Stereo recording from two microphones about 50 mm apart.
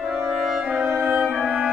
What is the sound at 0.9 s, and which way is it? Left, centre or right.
Music, right.